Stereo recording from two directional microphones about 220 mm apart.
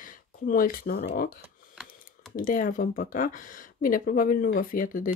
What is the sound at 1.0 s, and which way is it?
Speech, 40° left (ahead or behind).